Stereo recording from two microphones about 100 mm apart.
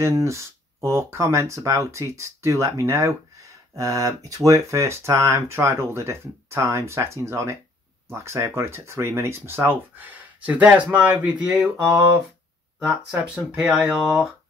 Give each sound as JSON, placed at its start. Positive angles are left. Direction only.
{"t": 0.0, "sound": "speech", "side_deg": -30}